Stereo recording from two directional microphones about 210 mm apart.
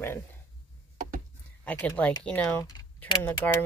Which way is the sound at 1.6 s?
10° left (ahead or behind).